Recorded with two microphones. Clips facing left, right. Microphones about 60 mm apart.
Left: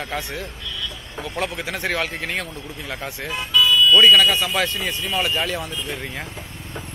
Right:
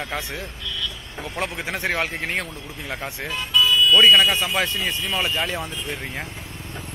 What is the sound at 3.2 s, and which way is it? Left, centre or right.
Speech, centre.